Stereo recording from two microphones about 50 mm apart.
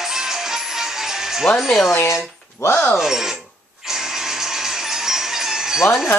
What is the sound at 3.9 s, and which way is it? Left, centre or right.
Music, centre.